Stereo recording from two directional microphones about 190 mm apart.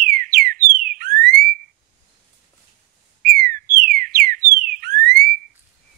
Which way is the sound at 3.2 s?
55° right (ahead or behind).